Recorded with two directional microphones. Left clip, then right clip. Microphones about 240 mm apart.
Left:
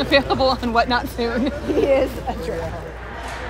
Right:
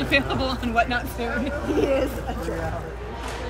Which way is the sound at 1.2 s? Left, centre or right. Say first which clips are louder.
Left 5 dB; left.